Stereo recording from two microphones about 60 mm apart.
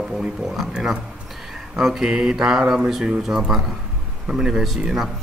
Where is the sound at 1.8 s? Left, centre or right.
Centre.